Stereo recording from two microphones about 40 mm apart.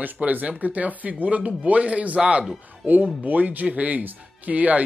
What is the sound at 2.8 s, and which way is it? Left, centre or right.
Speech, right.